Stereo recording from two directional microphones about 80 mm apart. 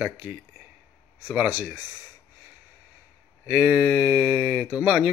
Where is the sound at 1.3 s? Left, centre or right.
Centre.